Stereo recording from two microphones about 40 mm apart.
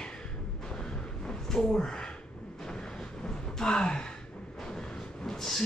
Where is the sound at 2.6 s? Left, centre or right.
Centre.